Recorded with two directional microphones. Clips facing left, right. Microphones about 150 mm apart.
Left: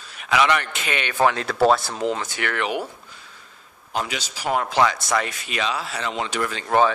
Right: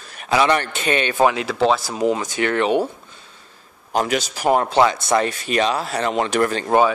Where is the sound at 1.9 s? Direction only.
15° right (ahead or behind).